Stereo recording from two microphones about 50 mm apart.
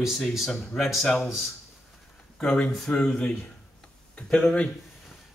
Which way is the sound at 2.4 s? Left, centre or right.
Centre.